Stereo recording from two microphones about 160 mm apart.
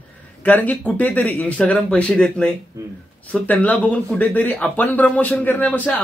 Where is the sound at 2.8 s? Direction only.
20° right (ahead or behind).